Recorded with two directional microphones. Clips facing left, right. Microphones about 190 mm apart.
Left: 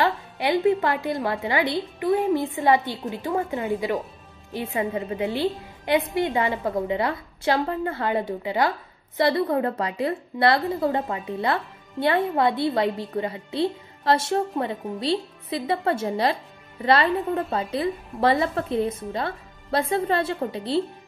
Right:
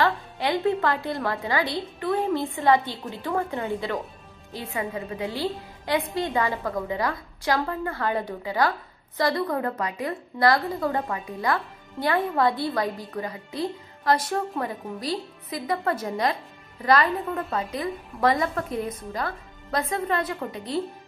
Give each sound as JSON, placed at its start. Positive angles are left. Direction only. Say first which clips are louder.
{"t": 0.0, "sound": "a woman's voice", "louder": "left 1 dB", "side_deg": 15}